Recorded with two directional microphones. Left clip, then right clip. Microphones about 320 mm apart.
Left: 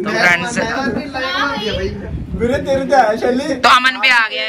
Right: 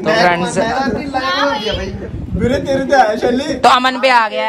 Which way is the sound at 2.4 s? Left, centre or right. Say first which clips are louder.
Even; centre.